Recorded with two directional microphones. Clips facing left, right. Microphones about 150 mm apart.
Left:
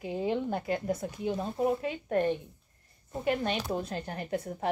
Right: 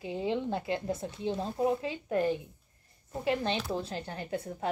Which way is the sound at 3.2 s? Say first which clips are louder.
Left 1 dB; 30° right (ahead or behind).